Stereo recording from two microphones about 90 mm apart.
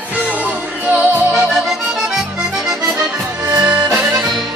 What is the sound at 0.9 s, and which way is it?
Music, 20° right (ahead or behind).